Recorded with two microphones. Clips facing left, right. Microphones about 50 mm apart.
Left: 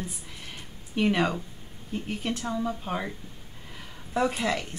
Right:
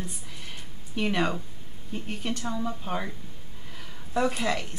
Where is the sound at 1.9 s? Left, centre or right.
Centre.